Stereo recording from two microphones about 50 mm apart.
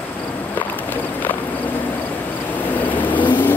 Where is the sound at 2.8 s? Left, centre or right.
Left.